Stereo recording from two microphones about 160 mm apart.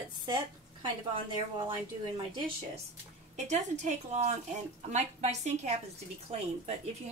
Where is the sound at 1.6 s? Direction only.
30° right (ahead or behind).